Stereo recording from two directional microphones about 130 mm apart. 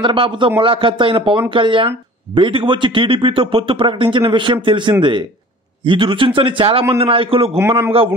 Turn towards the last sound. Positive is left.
turn(degrees=-20)  # may be behind; listen again after turning